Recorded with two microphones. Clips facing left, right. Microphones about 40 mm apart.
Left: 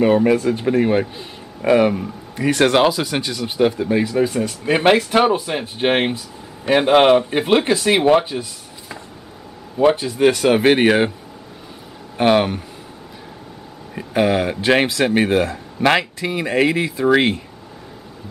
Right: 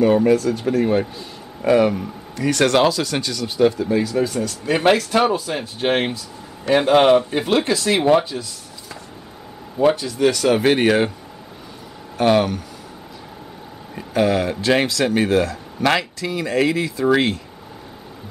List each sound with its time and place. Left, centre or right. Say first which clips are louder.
0.0 s a man's voice: even; left
12.2 s a man's voice: left 1 dB; left
13.9 s a man's voice: left 1 dB; centre